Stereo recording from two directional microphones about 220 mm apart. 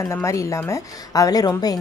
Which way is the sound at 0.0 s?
15° left (ahead or behind).